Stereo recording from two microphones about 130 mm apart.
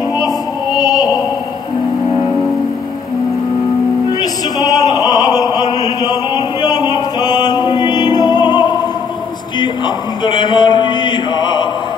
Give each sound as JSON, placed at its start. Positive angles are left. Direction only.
{"t": 0.7, "sound": "opera", "side_deg": 30}
{"t": 4.6, "sound": "opera", "side_deg": 30}
{"t": 9.6, "sound": "chant", "side_deg": 35}